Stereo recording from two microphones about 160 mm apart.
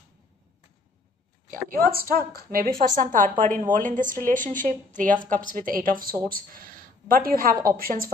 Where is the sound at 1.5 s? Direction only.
60° right (ahead or behind).